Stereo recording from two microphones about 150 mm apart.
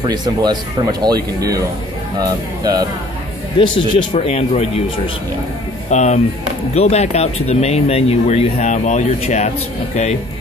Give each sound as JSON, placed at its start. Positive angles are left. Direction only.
{"t": 0.0, "sound": "speech", "side_deg": -25}
{"t": 3.5, "sound": "speech", "side_deg": 35}